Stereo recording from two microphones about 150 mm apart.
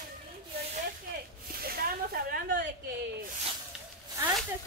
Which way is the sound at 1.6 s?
90° right.